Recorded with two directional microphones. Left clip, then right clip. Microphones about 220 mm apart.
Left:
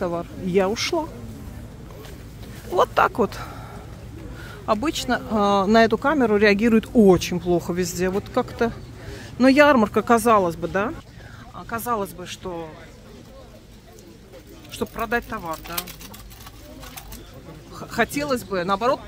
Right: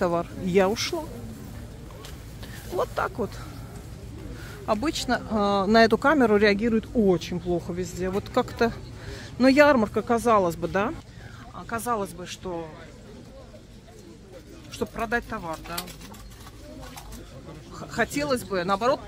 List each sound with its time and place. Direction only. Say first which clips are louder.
0.0 s speech: right 1 dB; 10° right (ahead or behind)
2.7 s speech: left 9 dB; 20° left (ahead or behind)
4.6 s speech: left 3 dB; 5° left (ahead or behind)
6.5 s speech: left 6 dB; 20° left (ahead or behind)
8.1 s speech: left 2 dB; centre (ahead or behind); by 10.3 s 15° left (ahead or behind)
10.3 s speech: left 3 dB; centre (ahead or behind)
14.7 s speech: left 3 dB; 5° left (ahead or behind)
17.7 s speech: left 3 dB; 5° left (ahead or behind)